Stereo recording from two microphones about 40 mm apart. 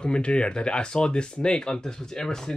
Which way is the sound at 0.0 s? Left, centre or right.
Left.